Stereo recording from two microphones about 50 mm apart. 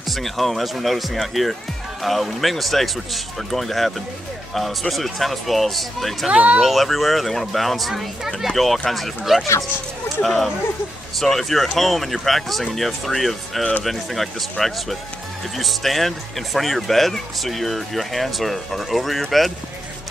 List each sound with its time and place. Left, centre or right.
0.1 s speech: centre
6.3 s speech: right
6.6 s speech: centre